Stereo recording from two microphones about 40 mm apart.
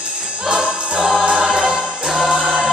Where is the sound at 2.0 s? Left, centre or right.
Centre.